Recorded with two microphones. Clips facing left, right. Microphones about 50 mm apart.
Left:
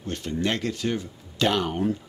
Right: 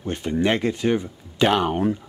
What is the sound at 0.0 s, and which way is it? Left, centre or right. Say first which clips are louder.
Speech: right 5 dB; right.